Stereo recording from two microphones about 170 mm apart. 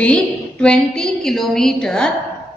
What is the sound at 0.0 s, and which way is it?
A woman's voice, 5° left (ahead or behind).